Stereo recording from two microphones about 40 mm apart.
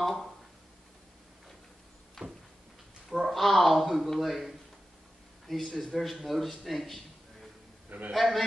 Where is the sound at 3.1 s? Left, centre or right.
Centre.